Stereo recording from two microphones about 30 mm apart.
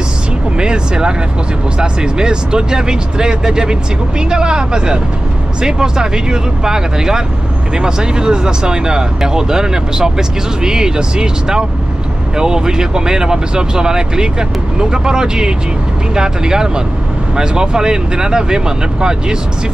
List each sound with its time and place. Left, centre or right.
0.6 s speech: right